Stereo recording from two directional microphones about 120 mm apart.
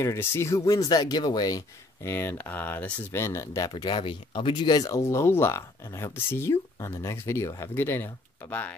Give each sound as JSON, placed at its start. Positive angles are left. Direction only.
{"t": 0.0, "sound": "speech", "side_deg": 20}
{"t": 2.0, "sound": "speech", "side_deg": 20}
{"t": 3.7, "sound": "speech", "side_deg": 45}